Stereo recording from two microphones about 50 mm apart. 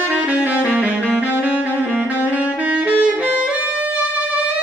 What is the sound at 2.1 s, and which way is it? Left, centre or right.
Saxophone, left.